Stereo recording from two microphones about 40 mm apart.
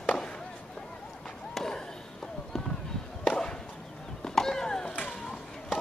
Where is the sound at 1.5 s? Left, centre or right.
Centre.